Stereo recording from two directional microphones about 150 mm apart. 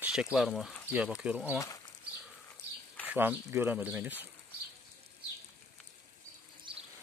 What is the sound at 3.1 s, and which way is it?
Speech, 15° right (ahead or behind).